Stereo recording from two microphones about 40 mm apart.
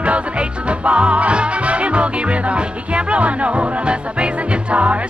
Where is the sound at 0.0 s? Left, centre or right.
Right.